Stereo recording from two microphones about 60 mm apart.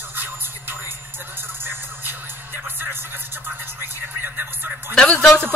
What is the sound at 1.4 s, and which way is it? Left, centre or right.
Music, right.